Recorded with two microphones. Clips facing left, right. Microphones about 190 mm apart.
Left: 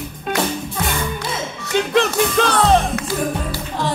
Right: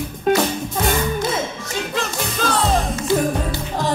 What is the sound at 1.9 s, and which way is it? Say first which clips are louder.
Music: left 11 dB; 65° left (ahead or behind).